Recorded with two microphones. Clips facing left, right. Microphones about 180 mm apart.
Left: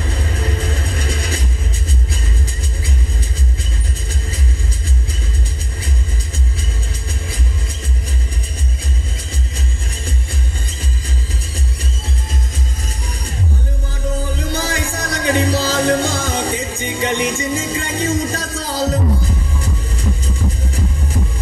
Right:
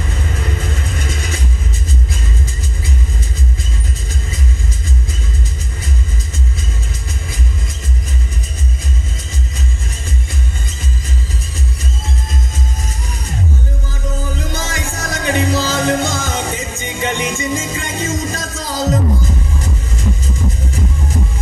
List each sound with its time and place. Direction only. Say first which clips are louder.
0.8 s music: left 1 dB; 35° left (ahead or behind)
14.5 s music: left 2 dB; 35° left (ahead or behind)